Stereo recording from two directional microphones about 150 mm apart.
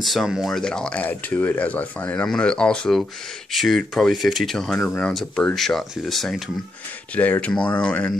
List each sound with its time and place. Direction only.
0.0 s speech: centre (ahead or behind)